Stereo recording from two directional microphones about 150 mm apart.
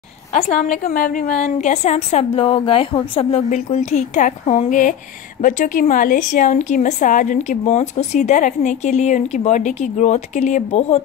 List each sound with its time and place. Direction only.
0.3 s a woman's voice: 50° left (ahead or behind)
0.9 s a woman's voice: 65° left (ahead or behind); by 11.0 s 45° left (ahead or behind)